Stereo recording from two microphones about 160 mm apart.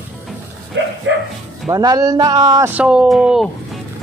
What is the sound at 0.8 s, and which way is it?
Bow-wow, 90° right.